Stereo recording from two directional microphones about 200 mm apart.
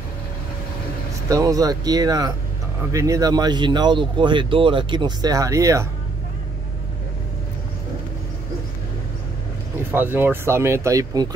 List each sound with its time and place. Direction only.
1.3 s speech: 20° right (ahead or behind)
9.8 s speech: 10° right (ahead or behind)